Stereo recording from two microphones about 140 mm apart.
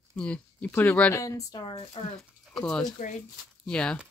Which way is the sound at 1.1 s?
20° left (ahead or behind).